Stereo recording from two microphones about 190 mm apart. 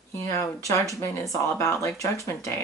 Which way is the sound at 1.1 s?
15° left (ahead or behind).